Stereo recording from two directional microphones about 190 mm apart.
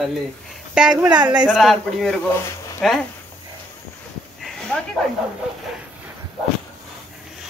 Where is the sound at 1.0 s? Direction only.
25° right (ahead or behind).